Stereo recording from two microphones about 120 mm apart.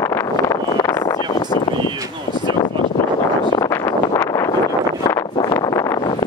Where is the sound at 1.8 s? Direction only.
40° right (ahead or behind).